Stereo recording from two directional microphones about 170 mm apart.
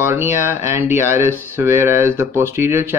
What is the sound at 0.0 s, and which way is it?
Speech, 15° right (ahead or behind).